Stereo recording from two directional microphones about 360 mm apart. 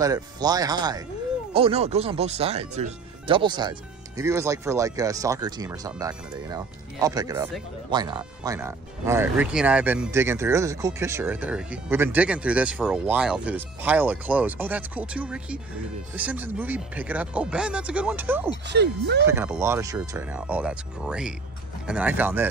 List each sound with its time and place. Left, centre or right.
0.0 s speech: centre
18.7 s speech: right
19.2 s speech: centre